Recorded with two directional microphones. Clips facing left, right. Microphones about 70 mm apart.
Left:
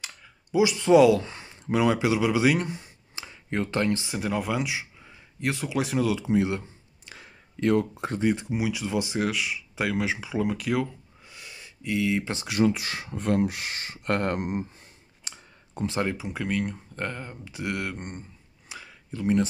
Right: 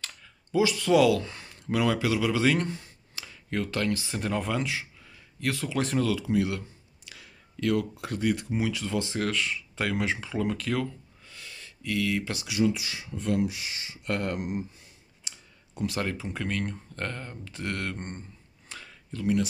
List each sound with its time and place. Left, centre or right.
0.0 s speech: centre
4.1 s speech: centre
5.8 s speech: centre
6.1 s speech: left
12.4 s speech: left
15.2 s clicking: left
15.9 s speech: centre
18.7 s a sound: centre